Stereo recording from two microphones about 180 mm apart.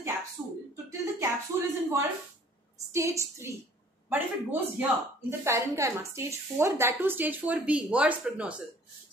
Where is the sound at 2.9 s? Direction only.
15° right (ahead or behind).